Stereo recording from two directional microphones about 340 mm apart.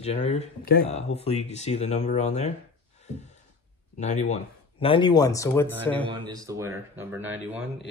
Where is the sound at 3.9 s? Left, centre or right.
Left.